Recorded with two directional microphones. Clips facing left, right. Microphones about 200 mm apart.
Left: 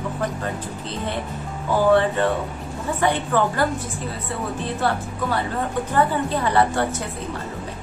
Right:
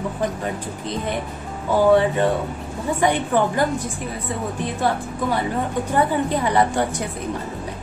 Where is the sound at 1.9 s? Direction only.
15° right (ahead or behind).